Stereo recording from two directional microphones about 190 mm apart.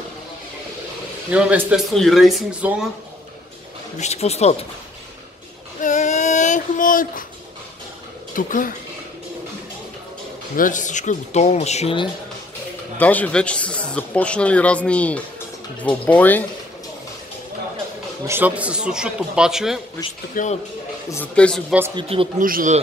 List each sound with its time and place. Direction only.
1.3 s speech: 5° right (ahead or behind)
4.0 s speech: 35° left (ahead or behind)
5.8 s child singing: 40° left (ahead or behind)
8.4 s speech: 45° left (ahead or behind)
10.5 s speech: 45° left (ahead or behind)
12.9 s a man's voice: 10° left (ahead or behind)
18.2 s speech: 10° right (ahead or behind)
20.4 s speech: 45° left (ahead or behind)
21.1 s speech: 10° left (ahead or behind)
21.9 s speech: 30° right (ahead or behind)
22.4 s a man's voice: 45° right (ahead or behind)